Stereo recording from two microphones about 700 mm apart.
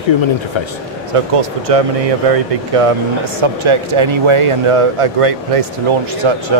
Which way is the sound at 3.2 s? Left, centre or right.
Right.